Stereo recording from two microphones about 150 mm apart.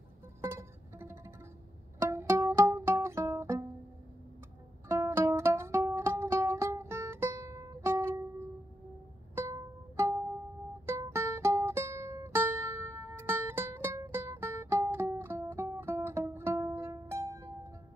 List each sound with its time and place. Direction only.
0.4 s music: 15° right (ahead or behind)
4.8 s music: 15° right (ahead or behind)
9.3 s music: 20° right (ahead or behind)